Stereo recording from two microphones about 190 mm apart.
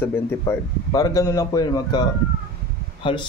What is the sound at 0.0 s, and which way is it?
A man's voice, 15° left (ahead or behind).